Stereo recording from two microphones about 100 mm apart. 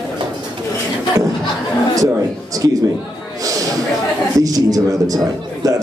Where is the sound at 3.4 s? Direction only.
35° right (ahead or behind).